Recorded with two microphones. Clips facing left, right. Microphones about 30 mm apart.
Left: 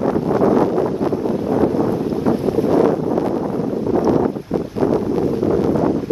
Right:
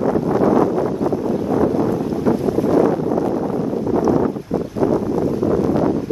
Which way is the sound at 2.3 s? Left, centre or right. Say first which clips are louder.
Even; left.